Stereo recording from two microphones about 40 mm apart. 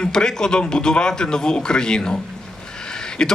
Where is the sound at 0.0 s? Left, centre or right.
Centre.